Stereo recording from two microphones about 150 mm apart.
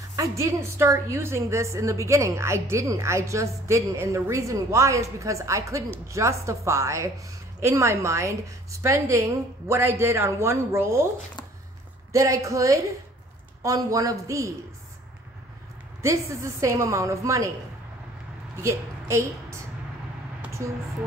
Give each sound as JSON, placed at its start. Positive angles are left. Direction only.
{"t": 0.1, "sound": "a woman's voice", "side_deg": -20}
{"t": 12.1, "sound": "a woman's voice", "side_deg": -20}
{"t": 16.0, "sound": "a woman's voice", "side_deg": -20}
{"t": 18.6, "sound": "a woman's voice", "side_deg": -20}